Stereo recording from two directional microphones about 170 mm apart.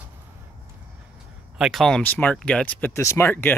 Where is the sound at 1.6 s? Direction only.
Centre (ahead or behind).